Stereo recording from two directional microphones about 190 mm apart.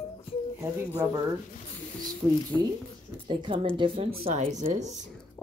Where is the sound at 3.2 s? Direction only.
25° right (ahead or behind).